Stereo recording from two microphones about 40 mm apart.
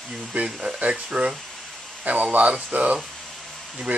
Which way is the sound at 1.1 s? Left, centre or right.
Right.